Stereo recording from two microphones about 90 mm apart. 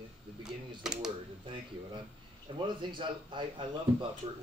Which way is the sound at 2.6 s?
60° right (ahead or behind).